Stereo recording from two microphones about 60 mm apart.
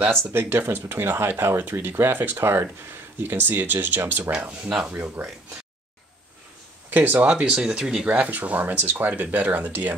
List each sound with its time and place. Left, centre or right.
0.0 s speech: right
4.3 s speech: centre
4.9 s speech: right
6.9 s speech: right; by 7.9 s centre
8.1 s speech: right